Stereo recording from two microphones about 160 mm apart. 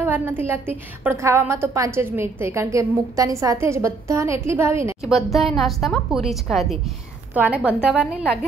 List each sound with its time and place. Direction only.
0.0 s a woman's voice: 15° right (ahead or behind)
5.0 s a woman's voice: centre (ahead or behind)